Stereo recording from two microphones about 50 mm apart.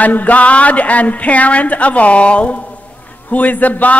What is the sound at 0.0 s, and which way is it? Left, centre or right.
A man's voice, left.